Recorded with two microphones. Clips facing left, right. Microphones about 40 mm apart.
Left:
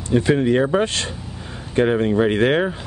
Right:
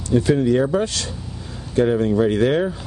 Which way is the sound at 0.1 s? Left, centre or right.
Left.